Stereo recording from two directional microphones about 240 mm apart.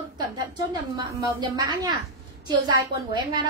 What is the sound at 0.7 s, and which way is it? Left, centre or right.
A woman's voice, centre.